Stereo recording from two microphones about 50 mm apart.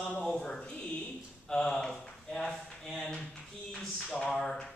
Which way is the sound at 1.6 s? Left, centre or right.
Centre.